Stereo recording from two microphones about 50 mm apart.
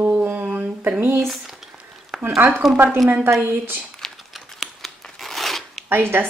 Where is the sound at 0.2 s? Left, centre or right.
Right.